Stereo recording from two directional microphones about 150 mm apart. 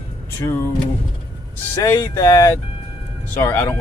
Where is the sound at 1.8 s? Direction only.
20° left (ahead or behind).